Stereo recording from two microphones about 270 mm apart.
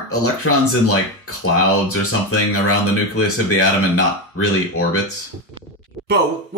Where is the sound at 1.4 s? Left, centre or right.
Left.